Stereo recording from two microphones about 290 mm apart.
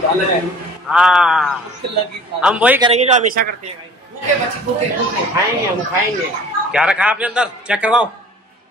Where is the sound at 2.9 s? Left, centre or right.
Right.